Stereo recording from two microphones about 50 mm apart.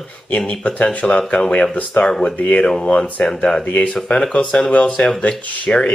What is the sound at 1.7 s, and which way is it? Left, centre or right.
Speech, left.